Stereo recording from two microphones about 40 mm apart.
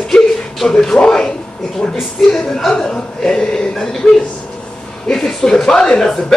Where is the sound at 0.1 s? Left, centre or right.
Centre.